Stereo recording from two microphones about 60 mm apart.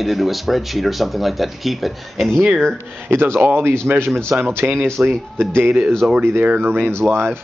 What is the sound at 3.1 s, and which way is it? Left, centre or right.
Speech, right.